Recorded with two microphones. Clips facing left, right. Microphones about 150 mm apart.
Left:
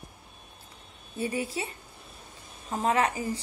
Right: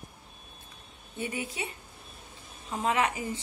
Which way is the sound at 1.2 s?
35° left (ahead or behind).